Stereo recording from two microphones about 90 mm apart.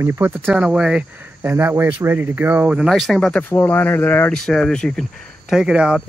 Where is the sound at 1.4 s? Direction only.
25° right (ahead or behind).